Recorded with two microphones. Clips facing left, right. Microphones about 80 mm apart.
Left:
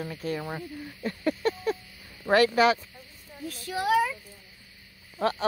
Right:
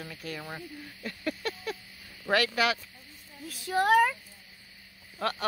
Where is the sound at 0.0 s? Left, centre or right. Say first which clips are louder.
Left 7 dB; left.